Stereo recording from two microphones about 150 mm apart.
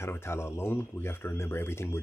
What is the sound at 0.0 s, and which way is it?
Speech, 15° left (ahead or behind).